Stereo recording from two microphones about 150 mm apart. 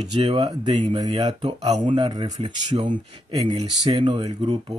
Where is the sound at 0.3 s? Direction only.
30° right (ahead or behind).